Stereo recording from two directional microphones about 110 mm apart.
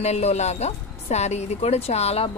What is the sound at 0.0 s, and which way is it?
A woman's voice, 80° left.